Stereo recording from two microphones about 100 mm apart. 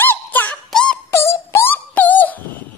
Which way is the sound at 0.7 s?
5° left (ahead or behind).